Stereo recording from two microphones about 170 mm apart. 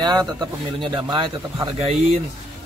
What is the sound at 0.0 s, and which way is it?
A man's voice, 25° right (ahead or behind).